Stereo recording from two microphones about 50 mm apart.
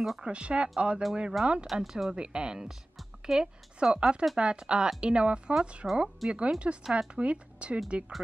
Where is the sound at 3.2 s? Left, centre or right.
Centre.